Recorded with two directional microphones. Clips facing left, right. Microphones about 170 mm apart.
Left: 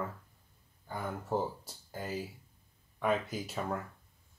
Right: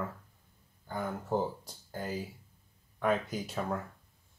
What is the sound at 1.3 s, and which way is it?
Speech, 5° left (ahead or behind).